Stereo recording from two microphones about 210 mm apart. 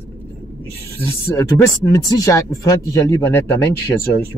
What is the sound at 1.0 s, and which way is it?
Speech, 15° left (ahead or behind).